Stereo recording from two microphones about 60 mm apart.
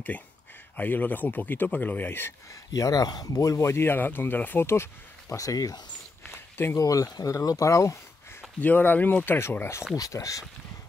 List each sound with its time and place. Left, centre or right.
0.7 s speech: left
2.7 s speech: left
3.5 s speech: left
5.3 s speech: left
6.3 s a sound: left
6.8 s speech: left
8.5 s speech: left
9.9 s speech: left